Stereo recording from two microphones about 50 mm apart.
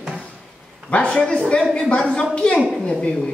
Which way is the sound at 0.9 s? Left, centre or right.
Left.